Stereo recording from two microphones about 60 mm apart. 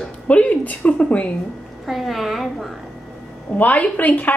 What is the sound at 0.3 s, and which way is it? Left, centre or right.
A woman's voice, left.